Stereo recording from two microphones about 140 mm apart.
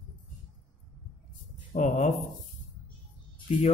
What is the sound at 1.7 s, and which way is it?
Speech, 65° left (ahead or behind).